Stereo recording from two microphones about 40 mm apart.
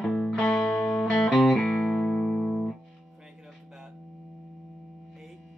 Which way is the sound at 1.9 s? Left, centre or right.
Centre.